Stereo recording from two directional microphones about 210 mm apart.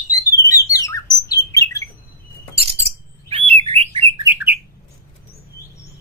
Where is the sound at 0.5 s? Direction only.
15° left (ahead or behind).